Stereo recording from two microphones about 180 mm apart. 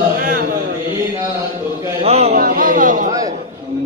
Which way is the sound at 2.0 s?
35° right (ahead or behind).